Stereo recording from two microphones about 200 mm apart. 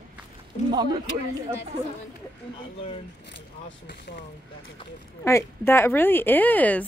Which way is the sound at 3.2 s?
60° left (ahead or behind).